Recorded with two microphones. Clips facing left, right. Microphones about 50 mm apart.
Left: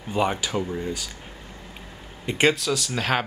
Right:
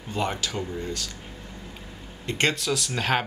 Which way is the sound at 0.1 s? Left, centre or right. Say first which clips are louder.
Left 4 dB; centre.